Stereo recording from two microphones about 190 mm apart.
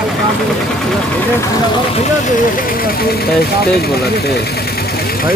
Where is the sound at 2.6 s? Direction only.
50° left (ahead or behind).